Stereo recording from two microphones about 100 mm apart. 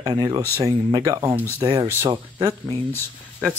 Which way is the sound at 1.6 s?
50° right (ahead or behind).